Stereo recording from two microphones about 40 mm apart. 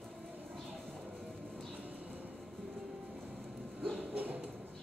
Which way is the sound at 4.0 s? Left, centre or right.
Right.